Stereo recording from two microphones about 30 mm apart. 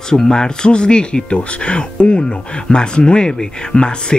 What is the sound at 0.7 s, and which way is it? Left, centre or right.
Speech, left.